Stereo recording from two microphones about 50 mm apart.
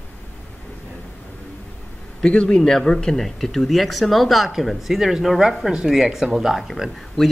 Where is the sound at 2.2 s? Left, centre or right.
Centre.